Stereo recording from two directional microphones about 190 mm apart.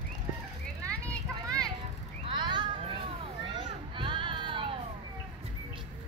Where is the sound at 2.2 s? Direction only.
25° right (ahead or behind).